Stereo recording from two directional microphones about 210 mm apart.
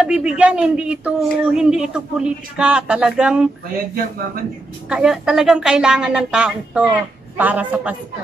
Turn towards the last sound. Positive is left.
turn(degrees=-5)  # may be behind; listen again after turning